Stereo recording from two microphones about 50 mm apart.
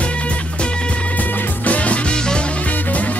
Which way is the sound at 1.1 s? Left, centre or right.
Left.